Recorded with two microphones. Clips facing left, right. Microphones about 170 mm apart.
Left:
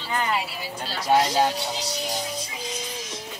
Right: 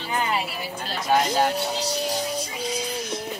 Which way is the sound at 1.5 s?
60° right (ahead or behind).